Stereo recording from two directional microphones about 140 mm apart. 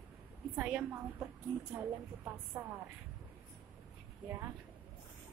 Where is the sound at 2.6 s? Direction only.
20° right (ahead or behind).